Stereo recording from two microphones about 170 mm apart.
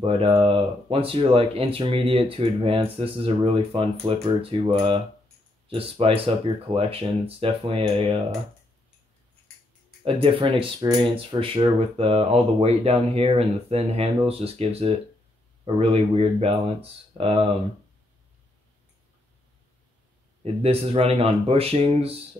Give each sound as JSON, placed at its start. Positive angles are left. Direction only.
{"t": 0.0, "sound": "speech", "side_deg": -35}
{"t": 10.0, "sound": "speech", "side_deg": -30}
{"t": 20.6, "sound": "speech", "side_deg": -35}